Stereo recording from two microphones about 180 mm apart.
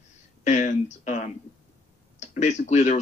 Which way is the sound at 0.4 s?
40° left (ahead or behind).